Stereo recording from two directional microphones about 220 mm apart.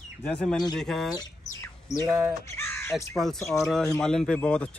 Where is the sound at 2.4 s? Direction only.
10° left (ahead or behind).